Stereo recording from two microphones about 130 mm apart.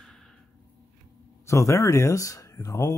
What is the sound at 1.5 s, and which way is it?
Speech, 25° left (ahead or behind).